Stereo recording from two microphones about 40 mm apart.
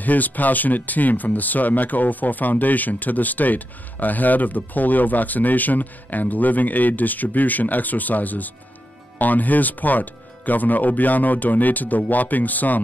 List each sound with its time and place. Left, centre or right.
0.0 s speech: left